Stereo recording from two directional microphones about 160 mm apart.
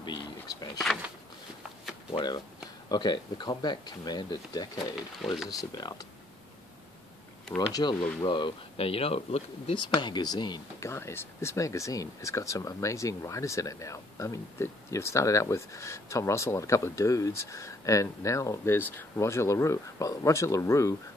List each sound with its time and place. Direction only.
0.0 s a sound: 30° left (ahead or behind)
2.1 s speech: 30° left (ahead or behind)
4.7 s speech: centre (ahead or behind)
5.7 s speech: 25° left (ahead or behind)
7.5 s speech: 25° left (ahead or behind)